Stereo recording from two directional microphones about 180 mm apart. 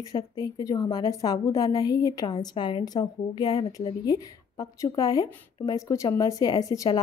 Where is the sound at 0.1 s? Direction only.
20° left (ahead or behind).